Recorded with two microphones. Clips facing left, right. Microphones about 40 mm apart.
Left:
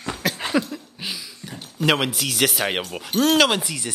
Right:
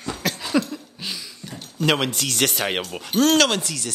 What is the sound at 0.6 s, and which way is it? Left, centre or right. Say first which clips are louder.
Speech: right 1 dB; centre.